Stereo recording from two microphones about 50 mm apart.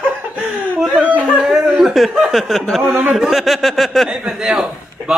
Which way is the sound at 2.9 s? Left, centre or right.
Right.